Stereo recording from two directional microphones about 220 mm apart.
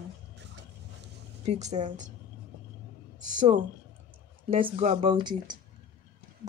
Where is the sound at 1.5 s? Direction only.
30° right (ahead or behind).